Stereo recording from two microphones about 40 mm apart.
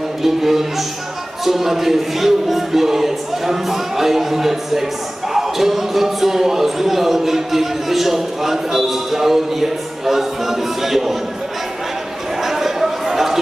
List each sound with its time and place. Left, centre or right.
0.2 s a man's voice: centre
1.4 s music: centre
5.3 s a man's voice: centre
12.4 s chatter: centre